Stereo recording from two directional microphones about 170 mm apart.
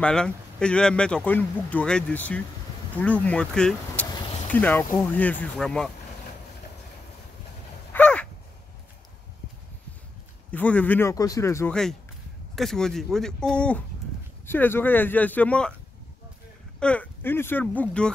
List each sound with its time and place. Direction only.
0.0 s speech: 5° left (ahead or behind)
7.9 s a sound: 5° left (ahead or behind)
10.5 s speech: 10° left (ahead or behind)
11.7 s speech: 5° left (ahead or behind)
16.8 s speech: 10° left (ahead or behind)